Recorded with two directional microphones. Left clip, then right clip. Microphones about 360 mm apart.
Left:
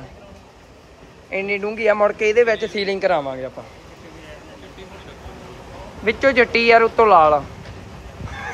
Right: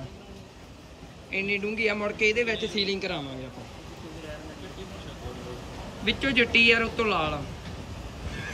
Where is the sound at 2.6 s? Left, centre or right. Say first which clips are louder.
Left 7 dB; centre.